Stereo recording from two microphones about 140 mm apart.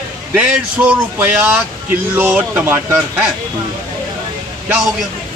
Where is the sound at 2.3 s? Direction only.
15° right (ahead or behind).